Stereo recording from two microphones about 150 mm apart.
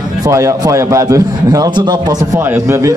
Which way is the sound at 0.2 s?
20° right (ahead or behind).